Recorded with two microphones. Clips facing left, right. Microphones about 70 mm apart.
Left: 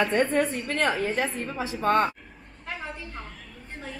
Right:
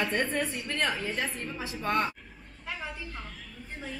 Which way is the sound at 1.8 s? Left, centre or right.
Left.